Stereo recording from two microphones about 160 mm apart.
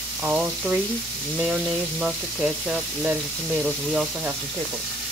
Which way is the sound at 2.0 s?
5° right (ahead or behind).